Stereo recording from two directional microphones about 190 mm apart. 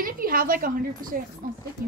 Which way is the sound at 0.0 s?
45° right (ahead or behind).